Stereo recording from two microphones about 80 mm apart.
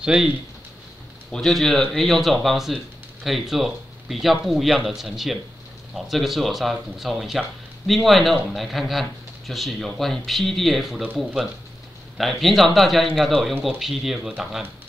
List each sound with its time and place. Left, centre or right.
0.0 s speech: centre
1.3 s speech: centre